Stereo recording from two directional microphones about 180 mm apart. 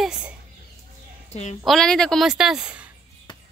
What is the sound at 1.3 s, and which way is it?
Speech, 40° left (ahead or behind).